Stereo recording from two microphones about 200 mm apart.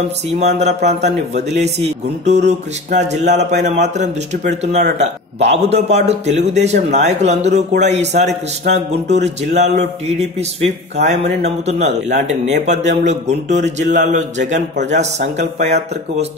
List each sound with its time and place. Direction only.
0.4 s a man's voice: 35° right (ahead or behind)